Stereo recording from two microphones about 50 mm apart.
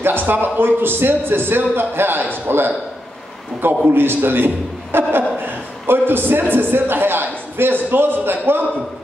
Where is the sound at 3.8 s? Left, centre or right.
Right.